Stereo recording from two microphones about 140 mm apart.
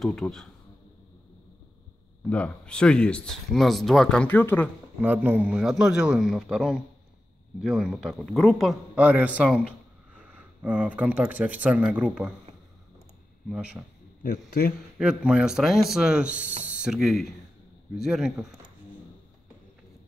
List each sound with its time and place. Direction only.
0.0 s a man's voice: 5° left (ahead or behind)
2.2 s speech: 10° left (ahead or behind)
5.0 s a man's voice: 15° right (ahead or behind)
8.9 s a man's voice: 10° right (ahead or behind)
13.5 s a man's voice: 5° right (ahead or behind)
14.2 s a man's voice: 90° left
15.0 s a man's voice: 5° right (ahead or behind)